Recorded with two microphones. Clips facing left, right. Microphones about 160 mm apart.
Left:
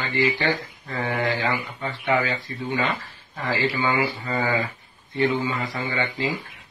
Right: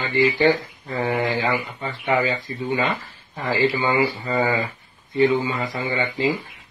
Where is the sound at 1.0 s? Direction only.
30° right (ahead or behind).